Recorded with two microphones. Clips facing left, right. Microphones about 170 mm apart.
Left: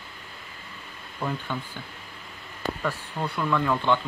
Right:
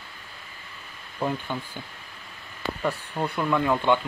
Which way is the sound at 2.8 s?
15° right (ahead or behind).